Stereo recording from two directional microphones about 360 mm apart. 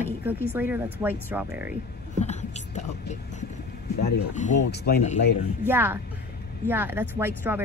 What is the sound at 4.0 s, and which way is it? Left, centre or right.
Speech, centre.